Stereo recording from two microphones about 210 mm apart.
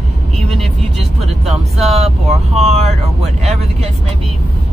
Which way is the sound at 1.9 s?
30° right (ahead or behind).